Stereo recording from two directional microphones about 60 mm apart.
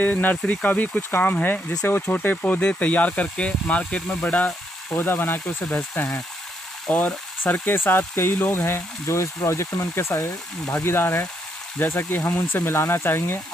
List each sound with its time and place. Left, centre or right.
0.0 s speech: left
0.4 s speech: centre
0.7 s speech: left
4.9 s speech: left
9.0 s speech: left